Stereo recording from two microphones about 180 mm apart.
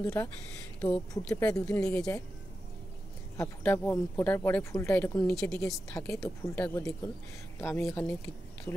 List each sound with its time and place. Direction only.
0.0 s speech: 15° left (ahead or behind)
3.3 s speech: 10° left (ahead or behind)
5.6 s speech: 15° left (ahead or behind)